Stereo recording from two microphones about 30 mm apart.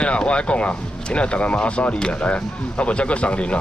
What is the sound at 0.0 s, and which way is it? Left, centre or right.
Speech, left.